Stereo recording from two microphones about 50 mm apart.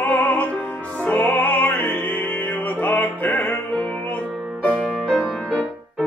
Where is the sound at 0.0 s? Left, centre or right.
Left.